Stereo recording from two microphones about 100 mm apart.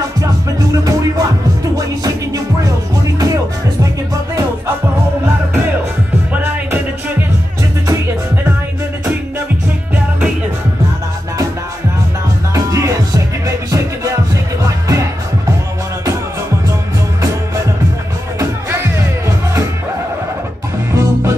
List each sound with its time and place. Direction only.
0.8 s music: 35° right (ahead or behind)
6.3 s music: 20° right (ahead or behind)
12.5 s music: 30° right (ahead or behind)
14.6 s music: 35° right (ahead or behind)
18.4 s music: 25° right (ahead or behind)
20.9 s music: 30° right (ahead or behind)